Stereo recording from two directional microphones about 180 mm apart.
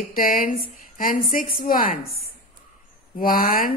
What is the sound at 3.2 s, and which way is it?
Speech, 50° left (ahead or behind).